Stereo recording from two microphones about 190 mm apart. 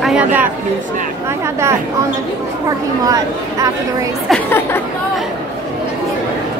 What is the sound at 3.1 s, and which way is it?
Speech, 15° right (ahead or behind).